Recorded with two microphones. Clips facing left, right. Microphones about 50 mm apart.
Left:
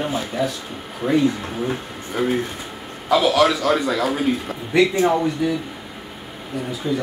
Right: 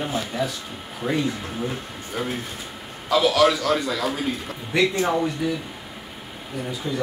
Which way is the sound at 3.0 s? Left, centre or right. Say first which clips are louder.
Left 2 dB; centre.